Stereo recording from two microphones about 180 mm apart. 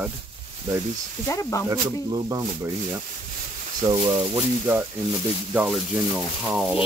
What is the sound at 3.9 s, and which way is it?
Speech, 30° right (ahead or behind).